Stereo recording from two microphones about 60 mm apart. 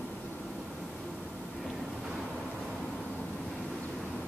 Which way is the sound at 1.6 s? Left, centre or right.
Centre.